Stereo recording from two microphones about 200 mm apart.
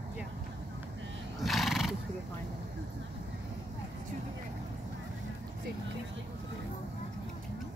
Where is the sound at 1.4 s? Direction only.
Centre (ahead or behind).